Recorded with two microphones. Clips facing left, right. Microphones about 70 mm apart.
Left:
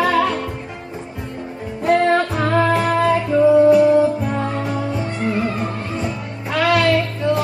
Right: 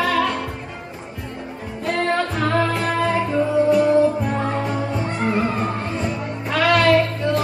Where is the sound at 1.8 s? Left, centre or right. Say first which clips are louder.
Left 6 dB; left.